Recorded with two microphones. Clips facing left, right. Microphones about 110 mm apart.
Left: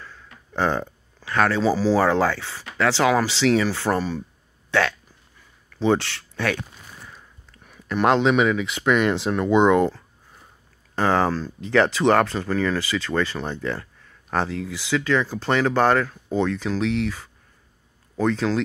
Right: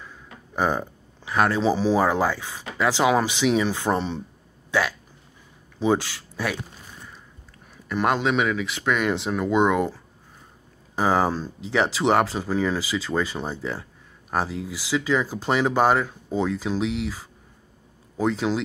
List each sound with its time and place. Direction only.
0.0 s speech: 15° right (ahead or behind)
4.6 s speech: 5° right (ahead or behind)
7.9 s speech: 5° right (ahead or behind)